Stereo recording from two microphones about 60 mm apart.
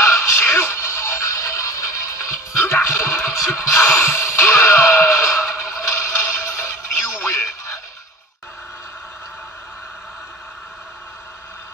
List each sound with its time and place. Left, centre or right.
0.0 s music: left